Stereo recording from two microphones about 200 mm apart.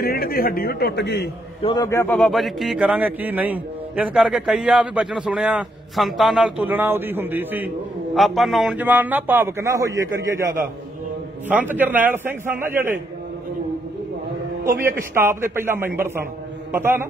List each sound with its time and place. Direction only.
0.0 s a man's voice: 50° left (ahead or behind)
1.6 s a man's voice: 20° left (ahead or behind)
2.1 s a man's voice: centre (ahead or behind)
15.1 s a man's voice: 10° right (ahead or behind)